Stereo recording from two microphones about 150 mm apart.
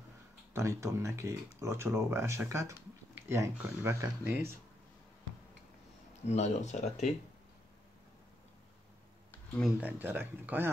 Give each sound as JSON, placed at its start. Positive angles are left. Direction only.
{"t": 0.5, "sound": "speech", "side_deg": -20}
{"t": 6.2, "sound": "speech", "side_deg": 50}
{"t": 9.8, "sound": "speech", "side_deg": -10}